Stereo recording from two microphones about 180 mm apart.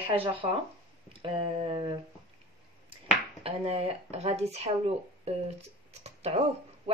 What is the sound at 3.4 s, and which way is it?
Speech, 30° right (ahead or behind).